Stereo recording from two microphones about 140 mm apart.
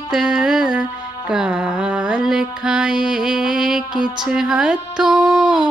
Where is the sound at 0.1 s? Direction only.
5° right (ahead or behind).